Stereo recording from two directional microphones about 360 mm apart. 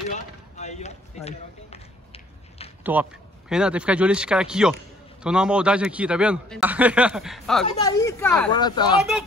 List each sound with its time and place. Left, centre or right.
0.1 s a sound: centre
2.8 s a man's voice: centre
7.6 s speech: centre